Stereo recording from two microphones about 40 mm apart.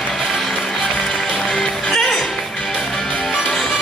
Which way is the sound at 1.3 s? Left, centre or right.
Centre.